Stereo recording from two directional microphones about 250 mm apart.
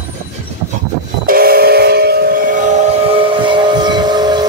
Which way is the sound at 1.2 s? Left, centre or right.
Right.